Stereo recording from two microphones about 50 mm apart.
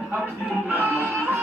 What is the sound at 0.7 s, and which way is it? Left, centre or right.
Music, left.